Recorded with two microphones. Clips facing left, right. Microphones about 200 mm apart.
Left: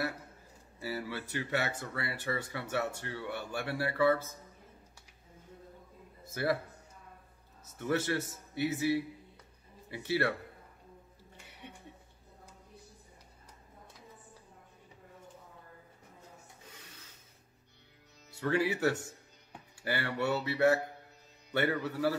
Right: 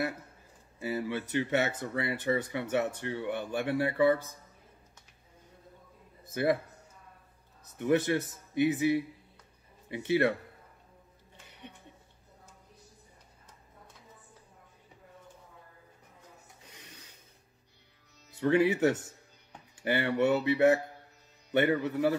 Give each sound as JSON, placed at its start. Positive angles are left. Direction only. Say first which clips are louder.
{"t": 0.7, "sound": "speech", "louder": "right 5 dB", "side_deg": -20}
{"t": 6.3, "sound": "speech", "louder": "right 4 dB", "side_deg": -20}
{"t": 7.8, "sound": "a man's voice", "louder": "right 5 dB", "side_deg": -20}
{"t": 18.4, "sound": "speech", "louder": "right 5 dB", "side_deg": -20}